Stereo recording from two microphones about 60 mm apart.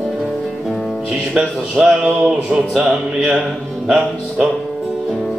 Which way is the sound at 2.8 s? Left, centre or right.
Centre.